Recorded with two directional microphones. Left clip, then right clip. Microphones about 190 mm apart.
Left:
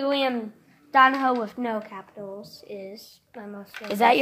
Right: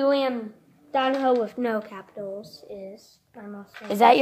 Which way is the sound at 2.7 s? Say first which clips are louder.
Left 1 dB; 50° left (ahead or behind).